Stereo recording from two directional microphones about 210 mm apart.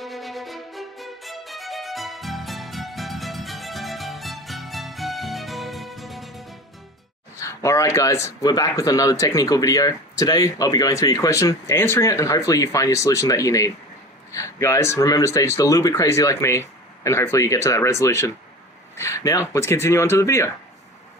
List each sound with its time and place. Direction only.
0.0 s music: centre (ahead or behind)
7.3 s speech: 15° left (ahead or behind)